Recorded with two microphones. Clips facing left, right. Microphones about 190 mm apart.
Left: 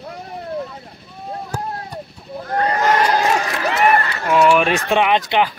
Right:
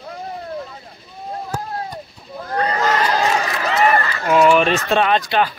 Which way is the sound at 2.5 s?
45° left (ahead or behind).